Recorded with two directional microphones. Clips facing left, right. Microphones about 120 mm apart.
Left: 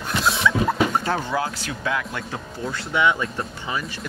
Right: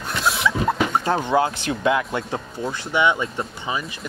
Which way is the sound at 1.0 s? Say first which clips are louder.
Right 4 dB; 20° right (ahead or behind).